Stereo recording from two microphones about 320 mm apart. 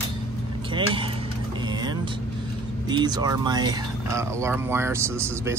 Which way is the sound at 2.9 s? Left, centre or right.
Centre.